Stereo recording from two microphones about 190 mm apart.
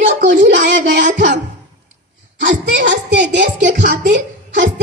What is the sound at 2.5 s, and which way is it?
Speech, 70° right (ahead or behind).